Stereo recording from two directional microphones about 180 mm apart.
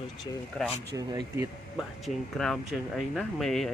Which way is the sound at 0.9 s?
20° right (ahead or behind).